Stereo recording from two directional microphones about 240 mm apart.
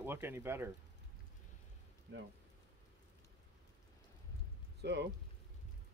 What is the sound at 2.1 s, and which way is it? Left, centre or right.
Speech, right.